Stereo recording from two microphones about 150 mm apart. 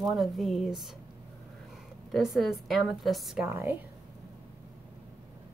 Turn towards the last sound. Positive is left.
turn(degrees=-15)  # may be behind; listen again after turning